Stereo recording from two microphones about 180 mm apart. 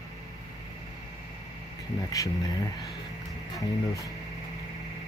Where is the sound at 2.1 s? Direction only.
20° left (ahead or behind).